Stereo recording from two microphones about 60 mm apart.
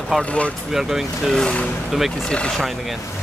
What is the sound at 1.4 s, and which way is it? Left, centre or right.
Speech, centre.